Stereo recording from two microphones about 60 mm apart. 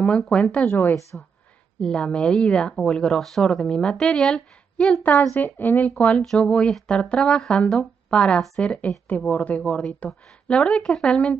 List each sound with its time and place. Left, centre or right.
0.3 s speech: centre
0.7 s speech: left
1.8 s speech: centre
5.4 s speech: left
5.8 s speech: centre